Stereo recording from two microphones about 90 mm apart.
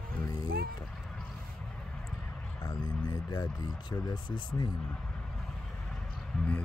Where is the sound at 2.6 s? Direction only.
45° left (ahead or behind).